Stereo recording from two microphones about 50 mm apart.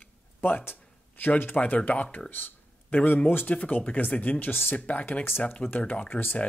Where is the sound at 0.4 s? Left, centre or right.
Left.